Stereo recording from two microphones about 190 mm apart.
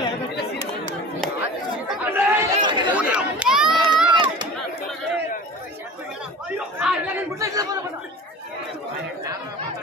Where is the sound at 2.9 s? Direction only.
5° right (ahead or behind).